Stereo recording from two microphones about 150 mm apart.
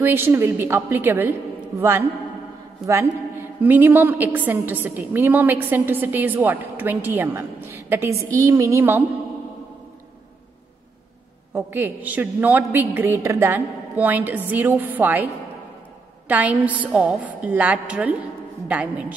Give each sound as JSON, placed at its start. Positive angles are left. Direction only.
{"t": 0.0, "sound": "a woman's voice", "side_deg": -15}
{"t": 11.5, "sound": "a woman's voice", "side_deg": -15}
{"t": 16.3, "sound": "a woman's voice", "side_deg": -10}